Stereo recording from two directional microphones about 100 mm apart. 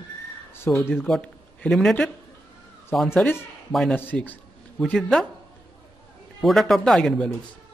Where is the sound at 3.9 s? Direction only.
15° left (ahead or behind).